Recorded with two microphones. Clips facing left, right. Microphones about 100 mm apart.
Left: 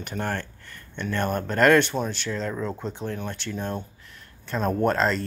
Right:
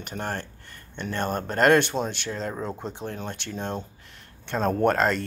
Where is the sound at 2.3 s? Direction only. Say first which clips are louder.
Left 2 dB; 35° right (ahead or behind).